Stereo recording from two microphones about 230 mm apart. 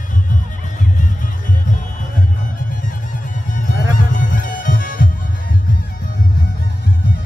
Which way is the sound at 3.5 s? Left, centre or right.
Left.